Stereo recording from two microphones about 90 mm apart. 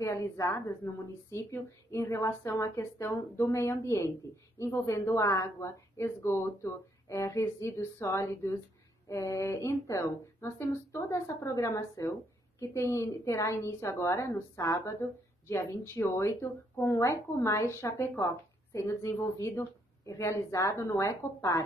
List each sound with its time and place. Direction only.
0.0 s a woman's voice: 35° left (ahead or behind)